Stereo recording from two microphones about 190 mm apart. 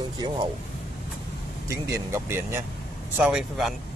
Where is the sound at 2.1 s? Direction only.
10° right (ahead or behind).